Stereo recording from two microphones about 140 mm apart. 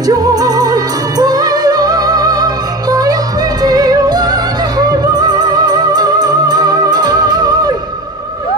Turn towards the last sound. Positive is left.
turn(degrees=-30)  # may be behind; listen again after turning